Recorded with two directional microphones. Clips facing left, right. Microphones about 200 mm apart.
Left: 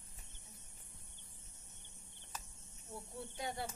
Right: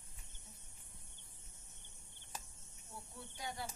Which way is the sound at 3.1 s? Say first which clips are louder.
Left 4 dB; 25° left (ahead or behind).